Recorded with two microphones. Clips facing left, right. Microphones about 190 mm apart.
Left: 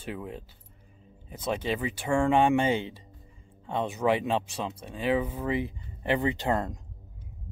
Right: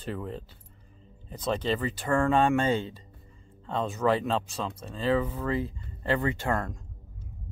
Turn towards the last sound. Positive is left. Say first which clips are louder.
# left 1 dB
turn(degrees=20)  # may be behind; listen again after turning